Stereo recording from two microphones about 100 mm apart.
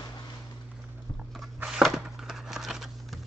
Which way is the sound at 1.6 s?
5° right (ahead or behind).